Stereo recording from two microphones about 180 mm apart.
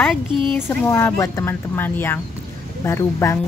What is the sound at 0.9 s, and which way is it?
Speech, 15° left (ahead or behind).